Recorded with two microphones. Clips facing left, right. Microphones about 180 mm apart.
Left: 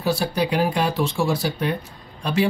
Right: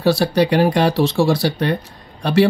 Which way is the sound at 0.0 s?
85° right.